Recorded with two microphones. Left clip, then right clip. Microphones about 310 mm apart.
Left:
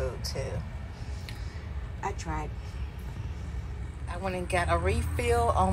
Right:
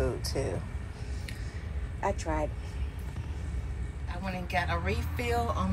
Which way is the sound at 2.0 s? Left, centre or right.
Centre.